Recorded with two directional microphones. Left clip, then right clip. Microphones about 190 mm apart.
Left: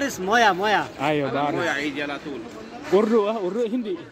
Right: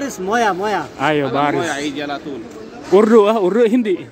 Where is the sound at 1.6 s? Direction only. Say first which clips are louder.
Right 4 dB; 50° right (ahead or behind).